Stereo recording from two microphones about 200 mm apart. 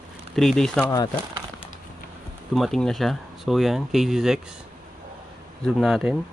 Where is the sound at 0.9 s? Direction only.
20° left (ahead or behind).